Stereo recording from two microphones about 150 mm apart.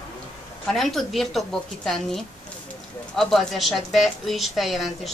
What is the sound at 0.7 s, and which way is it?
A woman's voice, centre (ahead or behind).